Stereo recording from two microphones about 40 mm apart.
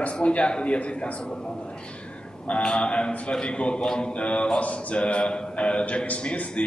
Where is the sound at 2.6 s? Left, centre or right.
Left.